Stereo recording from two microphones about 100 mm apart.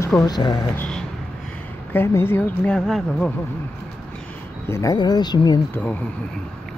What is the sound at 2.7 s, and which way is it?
Speech, 5° left (ahead or behind).